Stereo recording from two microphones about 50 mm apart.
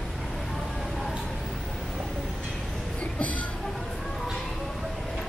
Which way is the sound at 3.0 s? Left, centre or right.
Left.